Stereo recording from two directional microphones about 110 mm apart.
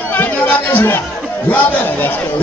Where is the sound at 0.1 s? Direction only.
20° left (ahead or behind).